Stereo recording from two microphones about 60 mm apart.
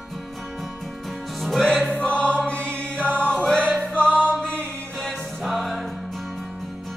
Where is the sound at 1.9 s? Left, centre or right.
Centre.